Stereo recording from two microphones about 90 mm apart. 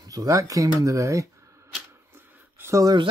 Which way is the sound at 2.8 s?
50° right (ahead or behind).